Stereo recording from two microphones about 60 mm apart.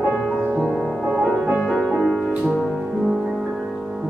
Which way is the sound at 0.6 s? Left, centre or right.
Centre.